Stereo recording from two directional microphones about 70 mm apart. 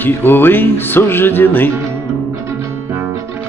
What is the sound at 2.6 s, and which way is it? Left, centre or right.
Music, right.